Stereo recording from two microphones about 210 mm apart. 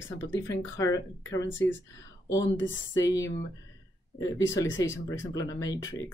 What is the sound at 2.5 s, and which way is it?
Speech, 65° left (ahead or behind).